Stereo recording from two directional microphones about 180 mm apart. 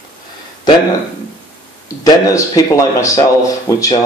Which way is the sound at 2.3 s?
20° left (ahead or behind).